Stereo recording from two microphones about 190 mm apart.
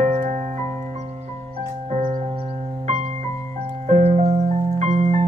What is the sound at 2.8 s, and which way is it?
Music, 40° right (ahead or behind).